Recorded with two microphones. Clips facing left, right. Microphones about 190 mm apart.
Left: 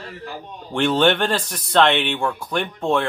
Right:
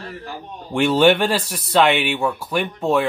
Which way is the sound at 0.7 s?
10° right (ahead or behind).